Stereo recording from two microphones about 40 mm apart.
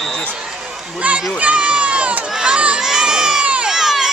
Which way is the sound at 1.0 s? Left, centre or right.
Right.